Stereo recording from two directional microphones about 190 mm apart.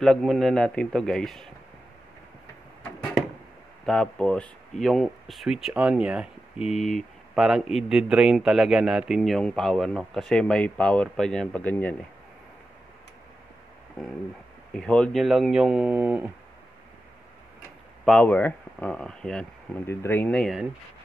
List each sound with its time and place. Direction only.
0.0 s speech: centre (ahead or behind)
2.8 s a sound: 5° left (ahead or behind)
3.8 s speech: 5° left (ahead or behind)
14.0 s speech: centre (ahead or behind)
18.0 s speech: 5° left (ahead or behind)